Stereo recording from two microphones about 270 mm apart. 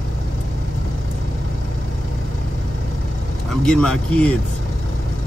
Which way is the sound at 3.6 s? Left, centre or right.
Centre.